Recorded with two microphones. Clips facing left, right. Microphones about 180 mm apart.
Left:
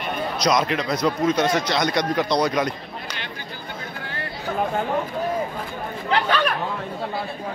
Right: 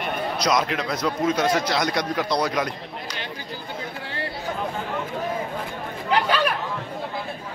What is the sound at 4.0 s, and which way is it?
Chatter, 30° right (ahead or behind).